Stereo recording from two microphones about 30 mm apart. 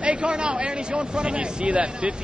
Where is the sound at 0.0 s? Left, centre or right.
Right.